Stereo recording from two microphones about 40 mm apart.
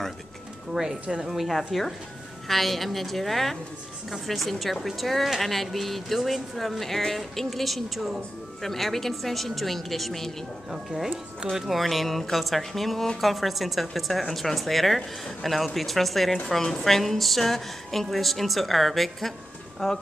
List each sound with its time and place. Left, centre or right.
0.8 s speech: centre
11.5 s speech: centre
11.8 s speech: centre
16.4 s a woman's voice: centre